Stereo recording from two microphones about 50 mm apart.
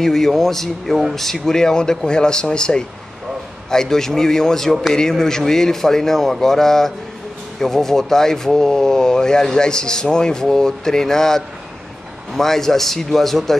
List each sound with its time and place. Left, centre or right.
0.0 s a man's voice: centre